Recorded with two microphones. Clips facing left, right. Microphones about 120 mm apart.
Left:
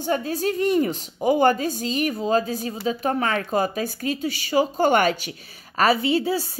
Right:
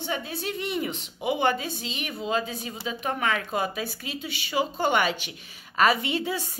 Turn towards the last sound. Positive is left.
turn(degrees=35)  # may be behind; listen again after turning